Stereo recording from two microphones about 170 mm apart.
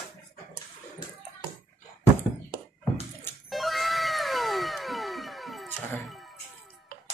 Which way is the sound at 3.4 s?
Centre (ahead or behind).